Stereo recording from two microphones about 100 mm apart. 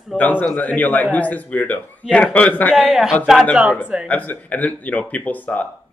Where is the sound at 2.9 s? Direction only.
5° right (ahead or behind).